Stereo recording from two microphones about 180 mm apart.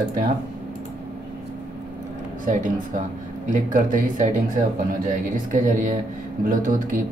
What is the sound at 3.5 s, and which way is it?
Speech, 45° right (ahead or behind).